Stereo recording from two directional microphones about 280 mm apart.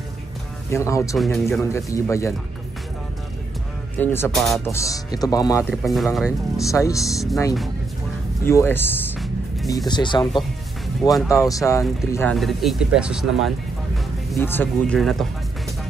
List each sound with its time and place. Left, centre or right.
0.7 s speech: centre
1.1 s speech: centre
4.0 s speech: centre
4.8 s speech: centre
5.6 s speech: centre
6.7 s speech: centre
7.0 s speech: centre
8.5 s music: centre
9.8 s speech: centre